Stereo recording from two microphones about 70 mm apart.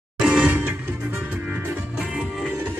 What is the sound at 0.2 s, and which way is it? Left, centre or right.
Music, centre.